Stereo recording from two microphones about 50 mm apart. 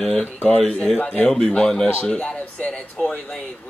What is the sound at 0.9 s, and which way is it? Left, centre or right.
Speech, left.